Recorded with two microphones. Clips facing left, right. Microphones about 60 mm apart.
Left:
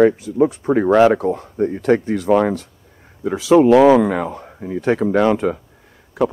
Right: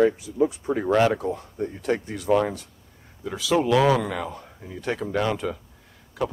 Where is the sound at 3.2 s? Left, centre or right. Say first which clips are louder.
Left 10 dB; left.